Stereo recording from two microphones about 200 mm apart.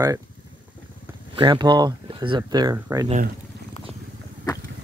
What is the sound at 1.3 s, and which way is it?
Speech, 25° right (ahead or behind).